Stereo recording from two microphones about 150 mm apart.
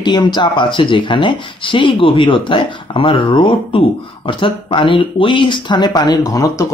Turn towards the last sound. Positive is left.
turn(degrees=25)  # may be behind; listen again after turning